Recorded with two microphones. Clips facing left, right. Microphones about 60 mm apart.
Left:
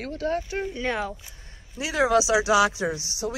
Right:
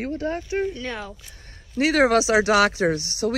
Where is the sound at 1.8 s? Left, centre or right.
Right.